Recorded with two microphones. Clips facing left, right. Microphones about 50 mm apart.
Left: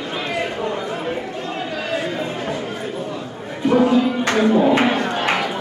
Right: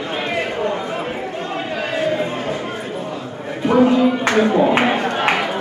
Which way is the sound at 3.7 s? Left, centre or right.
Centre.